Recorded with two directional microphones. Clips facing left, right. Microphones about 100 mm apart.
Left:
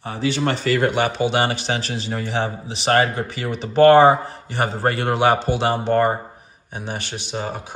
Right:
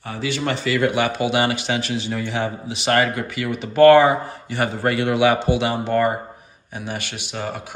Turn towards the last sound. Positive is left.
turn(degrees=25)  # may be behind; listen again after turning